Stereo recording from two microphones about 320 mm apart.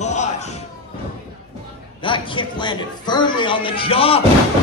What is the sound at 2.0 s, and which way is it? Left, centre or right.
A man's voice, centre.